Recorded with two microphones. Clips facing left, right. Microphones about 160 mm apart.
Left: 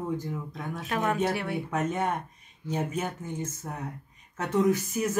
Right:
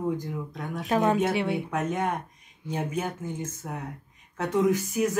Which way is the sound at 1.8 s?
10° right (ahead or behind).